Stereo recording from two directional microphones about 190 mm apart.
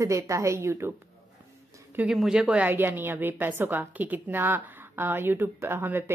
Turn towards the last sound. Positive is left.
turn(degrees=-10)  # may be behind; listen again after turning